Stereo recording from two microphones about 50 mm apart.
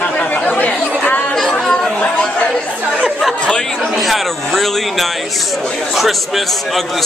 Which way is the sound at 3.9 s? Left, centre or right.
Centre.